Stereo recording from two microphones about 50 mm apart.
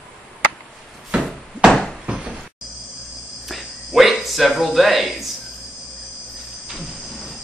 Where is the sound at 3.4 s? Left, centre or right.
Centre.